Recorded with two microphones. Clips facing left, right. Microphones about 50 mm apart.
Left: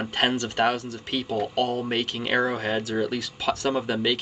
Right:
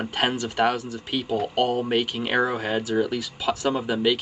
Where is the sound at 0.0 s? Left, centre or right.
Centre.